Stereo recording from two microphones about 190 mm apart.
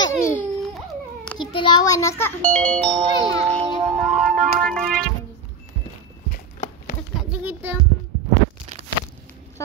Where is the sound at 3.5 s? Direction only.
5° left (ahead or behind).